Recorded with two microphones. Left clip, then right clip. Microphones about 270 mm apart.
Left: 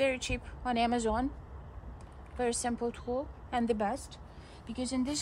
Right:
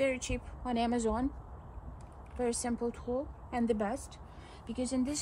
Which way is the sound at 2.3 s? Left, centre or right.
Centre.